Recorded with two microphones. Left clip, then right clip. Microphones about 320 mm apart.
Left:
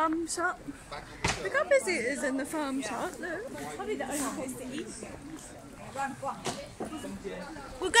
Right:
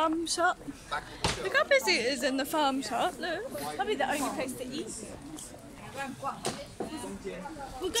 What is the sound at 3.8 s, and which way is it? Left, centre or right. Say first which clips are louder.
Speech: right 5 dB; right.